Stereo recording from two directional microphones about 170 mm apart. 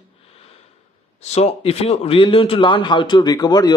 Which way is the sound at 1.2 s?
40° left (ahead or behind).